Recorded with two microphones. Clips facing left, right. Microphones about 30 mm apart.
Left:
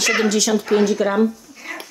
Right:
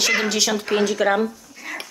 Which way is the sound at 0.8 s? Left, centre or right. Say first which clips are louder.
Left 1 dB; right.